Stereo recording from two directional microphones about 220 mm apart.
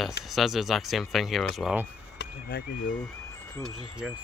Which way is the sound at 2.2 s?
45° left (ahead or behind).